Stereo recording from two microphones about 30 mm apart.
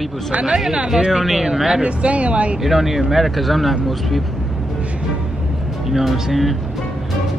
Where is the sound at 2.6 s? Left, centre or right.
Centre.